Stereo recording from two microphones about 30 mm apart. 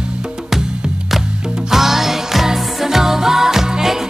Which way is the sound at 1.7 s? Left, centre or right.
Centre.